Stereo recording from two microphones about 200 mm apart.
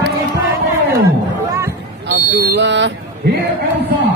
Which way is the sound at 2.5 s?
60° right (ahead or behind).